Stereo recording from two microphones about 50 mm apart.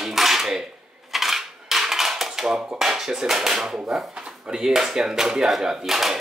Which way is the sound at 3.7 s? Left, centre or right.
Centre.